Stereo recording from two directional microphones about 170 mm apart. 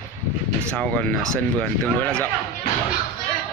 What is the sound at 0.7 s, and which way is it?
Speech, 5° left (ahead or behind).